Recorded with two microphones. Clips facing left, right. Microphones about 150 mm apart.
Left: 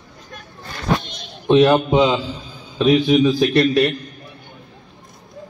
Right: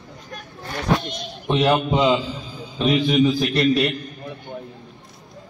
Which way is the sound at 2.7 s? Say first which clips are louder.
Left 4 dB; 80° left.